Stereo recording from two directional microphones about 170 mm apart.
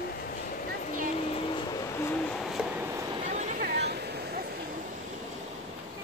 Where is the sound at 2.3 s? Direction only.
Centre (ahead or behind).